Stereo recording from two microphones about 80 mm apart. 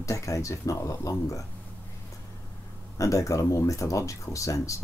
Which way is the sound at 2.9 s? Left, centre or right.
Left.